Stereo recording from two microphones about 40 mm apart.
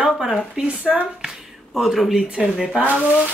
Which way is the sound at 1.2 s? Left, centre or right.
Centre.